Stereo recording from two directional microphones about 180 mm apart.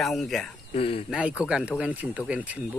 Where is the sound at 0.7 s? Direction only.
35° left (ahead or behind).